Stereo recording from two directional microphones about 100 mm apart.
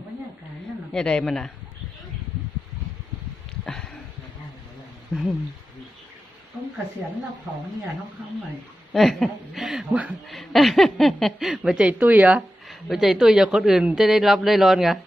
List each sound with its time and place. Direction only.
0.9 s speech: 10° left (ahead or behind)
3.6 s a sound: 5° left (ahead or behind)
8.9 s speech: centre (ahead or behind)
10.2 s speech: centre (ahead or behind)
12.6 s speech: 5° right (ahead or behind)